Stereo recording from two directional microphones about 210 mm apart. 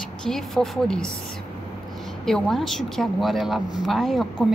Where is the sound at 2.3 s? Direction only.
Centre (ahead or behind).